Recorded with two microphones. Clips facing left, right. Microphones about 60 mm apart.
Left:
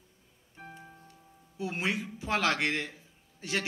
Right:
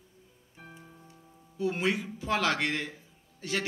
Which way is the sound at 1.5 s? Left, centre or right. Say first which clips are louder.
Right 3 dB; centre.